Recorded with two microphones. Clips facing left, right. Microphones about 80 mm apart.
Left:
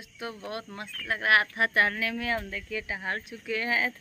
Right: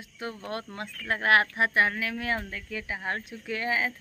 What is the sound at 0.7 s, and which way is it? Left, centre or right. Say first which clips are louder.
Speech: right 3 dB; right.